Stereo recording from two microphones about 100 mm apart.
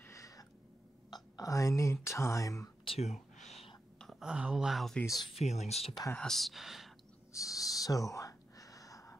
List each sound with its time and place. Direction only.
0.0 s a sound: 30° left (ahead or behind)
1.1 s speech: 40° left (ahead or behind)
2.8 s speech: 65° left (ahead or behind)
4.0 s speech: 5° right (ahead or behind)
5.4 s speech: 90° left
6.1 s speech: 5° left (ahead or behind)
7.3 s whispering: 35° left (ahead or behind)